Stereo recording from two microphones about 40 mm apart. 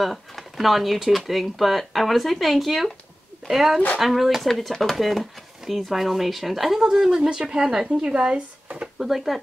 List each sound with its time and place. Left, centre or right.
0.0 s speech: centre
6.8 s speech: centre
8.9 s speech: centre